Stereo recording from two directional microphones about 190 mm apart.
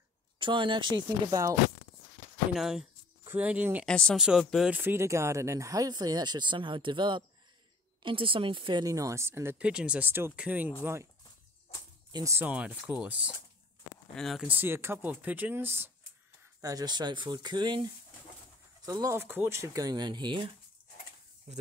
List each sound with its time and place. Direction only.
0.4 s speech: 25° right (ahead or behind)
2.5 s speech: centre (ahead or behind)
3.8 s speech: 5° left (ahead or behind); by 11.1 s 15° right (ahead or behind)
12.1 s speech: 15° right (ahead or behind); by 14.6 s centre (ahead or behind)
14.6 s speech: 10° right (ahead or behind)
21.5 s speech: 35° right (ahead or behind)